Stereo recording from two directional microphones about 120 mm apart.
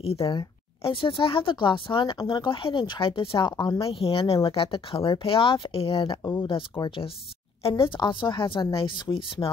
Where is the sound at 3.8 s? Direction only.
50° left (ahead or behind).